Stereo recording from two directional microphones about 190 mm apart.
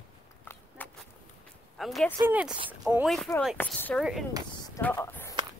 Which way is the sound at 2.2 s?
10° right (ahead or behind).